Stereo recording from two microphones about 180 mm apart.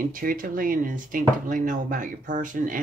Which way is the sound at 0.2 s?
50° right (ahead or behind).